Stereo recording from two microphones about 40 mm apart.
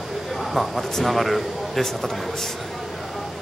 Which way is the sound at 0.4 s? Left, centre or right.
Centre.